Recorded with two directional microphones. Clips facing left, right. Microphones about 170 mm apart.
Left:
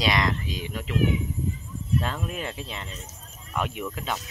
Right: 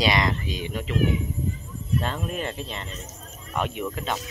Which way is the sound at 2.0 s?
5° left (ahead or behind).